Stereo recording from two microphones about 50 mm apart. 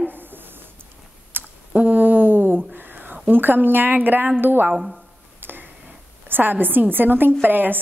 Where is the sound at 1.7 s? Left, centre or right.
Right.